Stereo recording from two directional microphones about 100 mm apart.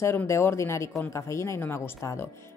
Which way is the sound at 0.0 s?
25° left (ahead or behind).